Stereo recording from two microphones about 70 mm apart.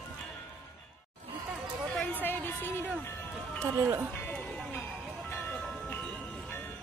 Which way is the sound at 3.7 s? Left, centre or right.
Right.